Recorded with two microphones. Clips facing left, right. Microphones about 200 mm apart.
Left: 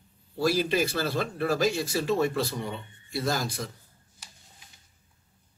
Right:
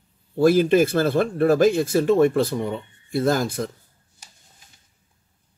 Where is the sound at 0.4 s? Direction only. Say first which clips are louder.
Right 9 dB; 50° right (ahead or behind).